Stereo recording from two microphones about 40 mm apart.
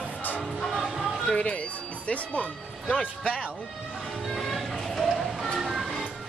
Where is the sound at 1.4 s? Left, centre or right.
Left.